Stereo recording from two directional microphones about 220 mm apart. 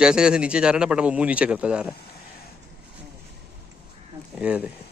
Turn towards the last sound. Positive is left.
turn(degrees=-5)  # may be behind; listen again after turning